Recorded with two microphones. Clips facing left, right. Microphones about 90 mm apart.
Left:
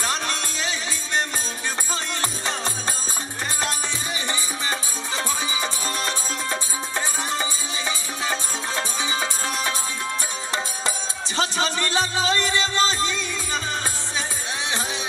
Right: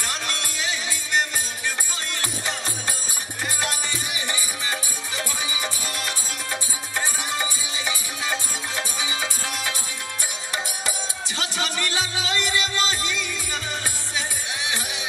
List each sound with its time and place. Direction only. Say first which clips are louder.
0.0 s music: left 4 dB; 25° left (ahead or behind)
4.3 s music: left 2 dB; 25° left (ahead or behind)
11.3 s music: left 5 dB; 25° left (ahead or behind)